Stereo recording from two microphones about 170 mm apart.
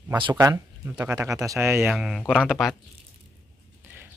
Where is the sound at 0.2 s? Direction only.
25° right (ahead or behind).